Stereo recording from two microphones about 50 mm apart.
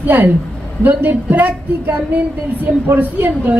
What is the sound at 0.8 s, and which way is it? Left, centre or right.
A woman's voice, right.